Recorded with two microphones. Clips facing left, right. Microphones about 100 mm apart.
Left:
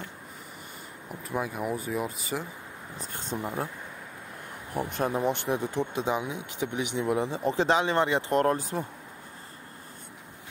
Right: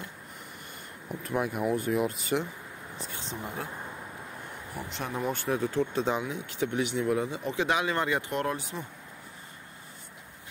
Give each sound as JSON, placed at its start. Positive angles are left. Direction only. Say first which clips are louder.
{"t": 1.2, "sound": "speech", "louder": "right 2 dB", "side_deg": 0}
{"t": 3.0, "sound": "speech", "louder": "left 5 dB", "side_deg": 45}
{"t": 4.7, "sound": "speech", "louder": "left 8 dB", "side_deg": 50}
{"t": 5.1, "sound": "speech", "louder": "right 2 dB", "side_deg": 25}
{"t": 8.3, "sound": "speech", "louder": "left 6 dB", "side_deg": 40}